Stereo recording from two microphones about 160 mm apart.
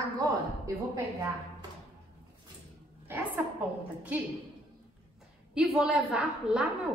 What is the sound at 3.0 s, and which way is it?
Speech, 15° right (ahead or behind).